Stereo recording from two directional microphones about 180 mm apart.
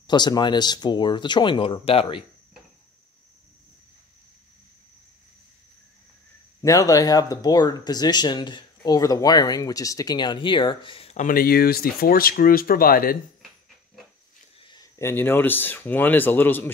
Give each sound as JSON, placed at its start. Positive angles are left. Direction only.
{"t": 0.0, "sound": "speech", "side_deg": 25}
{"t": 6.6, "sound": "speech", "side_deg": 20}
{"t": 14.7, "sound": "speech", "side_deg": 20}